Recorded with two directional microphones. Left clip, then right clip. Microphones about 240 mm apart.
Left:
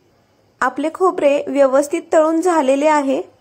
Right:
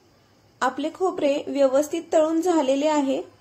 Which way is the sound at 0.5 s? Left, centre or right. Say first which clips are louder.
Left 6 dB; left.